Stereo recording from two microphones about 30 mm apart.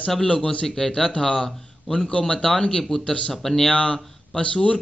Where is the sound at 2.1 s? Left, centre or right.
Left.